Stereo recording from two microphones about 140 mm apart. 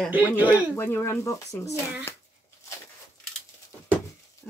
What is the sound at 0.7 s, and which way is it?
Speech, 15° left (ahead or behind).